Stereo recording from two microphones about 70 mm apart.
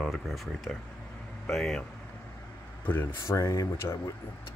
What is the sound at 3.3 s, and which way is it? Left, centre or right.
Speech, left.